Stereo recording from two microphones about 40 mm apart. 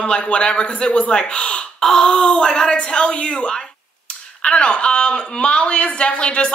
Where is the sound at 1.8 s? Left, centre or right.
Centre.